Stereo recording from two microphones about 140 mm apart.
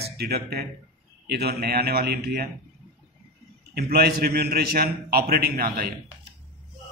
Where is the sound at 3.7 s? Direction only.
90° right.